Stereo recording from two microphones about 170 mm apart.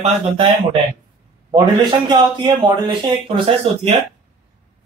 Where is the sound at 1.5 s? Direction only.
25° right (ahead or behind).